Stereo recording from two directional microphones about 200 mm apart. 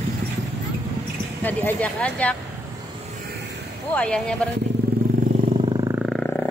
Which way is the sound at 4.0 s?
5° left (ahead or behind).